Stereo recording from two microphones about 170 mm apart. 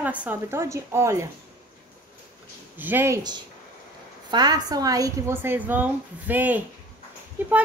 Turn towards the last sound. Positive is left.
turn(degrees=-10)  # may be behind; listen again after turning